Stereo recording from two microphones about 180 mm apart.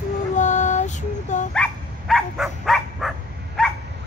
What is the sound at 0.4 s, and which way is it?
Mantra, 40° left (ahead or behind).